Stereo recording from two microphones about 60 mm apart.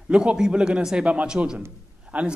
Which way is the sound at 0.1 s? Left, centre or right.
Centre.